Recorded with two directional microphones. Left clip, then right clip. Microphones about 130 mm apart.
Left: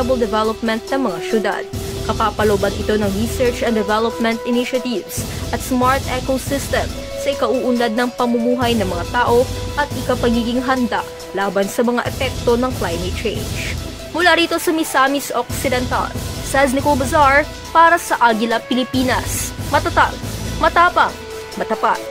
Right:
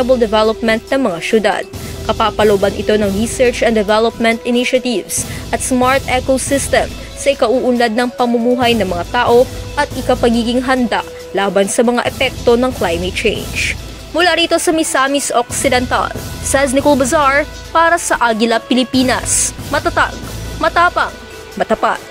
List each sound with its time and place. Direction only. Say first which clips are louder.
0.3 s speech: right 6 dB; 40° right (ahead or behind)
14.1 s speech: right 2 dB; 30° right (ahead or behind)